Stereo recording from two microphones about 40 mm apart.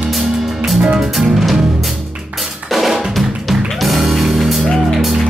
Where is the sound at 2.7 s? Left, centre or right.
Centre.